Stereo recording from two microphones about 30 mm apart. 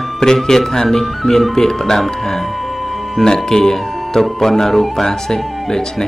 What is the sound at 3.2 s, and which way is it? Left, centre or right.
A man's voice, centre.